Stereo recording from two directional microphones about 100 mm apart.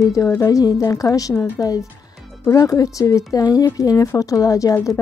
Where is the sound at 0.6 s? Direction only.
35° left (ahead or behind).